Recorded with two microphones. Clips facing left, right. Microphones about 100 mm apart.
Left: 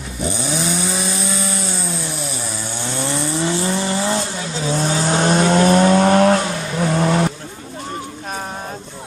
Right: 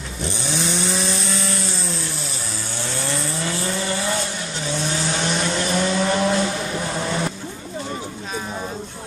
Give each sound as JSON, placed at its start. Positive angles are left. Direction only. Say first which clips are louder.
{"t": 0.2, "sound": "chainsaw", "louder": "left 4 dB", "side_deg": 10}
{"t": 3.0, "sound": "vehicle", "louder": "left 6 dB", "side_deg": 20}
{"t": 4.7, "sound": "vehicle", "louder": "left 6 dB", "side_deg": 40}